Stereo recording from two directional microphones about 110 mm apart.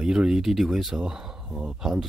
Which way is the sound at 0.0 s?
10° right (ahead or behind).